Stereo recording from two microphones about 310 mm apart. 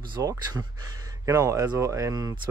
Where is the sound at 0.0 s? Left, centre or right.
Centre.